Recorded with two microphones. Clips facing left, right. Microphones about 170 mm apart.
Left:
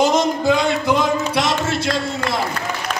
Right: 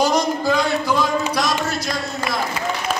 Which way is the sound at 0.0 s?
20° left (ahead or behind).